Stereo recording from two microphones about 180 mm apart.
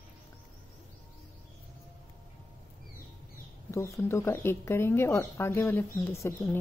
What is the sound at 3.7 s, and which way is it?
Speech, 15° left (ahead or behind).